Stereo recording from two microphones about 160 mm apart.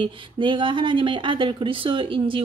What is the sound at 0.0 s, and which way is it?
Speech, 30° right (ahead or behind).